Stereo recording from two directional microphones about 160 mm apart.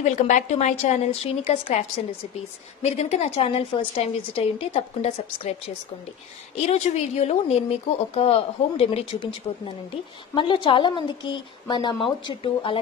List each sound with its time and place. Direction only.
0.0 s a woman's voice: 45° left (ahead or behind); by 12.7 s 30° left (ahead or behind)